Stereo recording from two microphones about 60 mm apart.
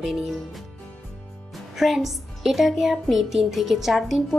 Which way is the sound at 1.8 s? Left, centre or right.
Centre.